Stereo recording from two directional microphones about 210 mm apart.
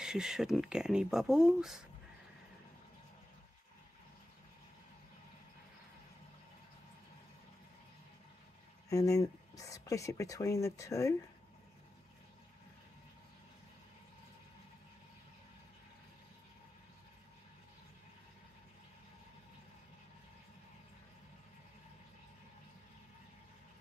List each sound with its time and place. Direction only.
0.0 s speech: 5° right (ahead or behind)
8.8 s speech: 15° left (ahead or behind)